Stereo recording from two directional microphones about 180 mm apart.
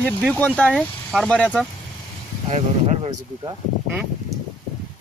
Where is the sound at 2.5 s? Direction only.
35° right (ahead or behind).